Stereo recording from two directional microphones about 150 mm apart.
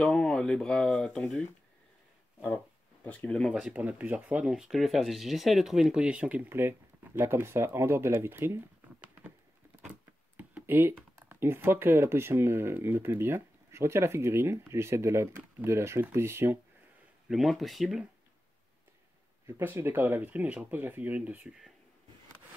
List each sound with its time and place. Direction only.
0.0 s speech: 5° left (ahead or behind)
2.4 s speech: 10° left (ahead or behind)
3.5 s speech: 10° right (ahead or behind)
9.8 s a sound: 10° right (ahead or behind)
11.1 s speech: 15° right (ahead or behind)
17.3 s speech: centre (ahead or behind)
19.4 s speech: 15° right (ahead or behind)